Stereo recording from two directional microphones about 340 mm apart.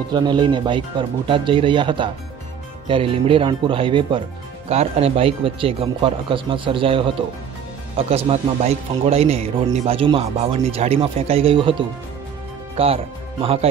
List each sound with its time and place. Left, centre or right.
0.1 s a man's voice: centre
12.7 s speech: centre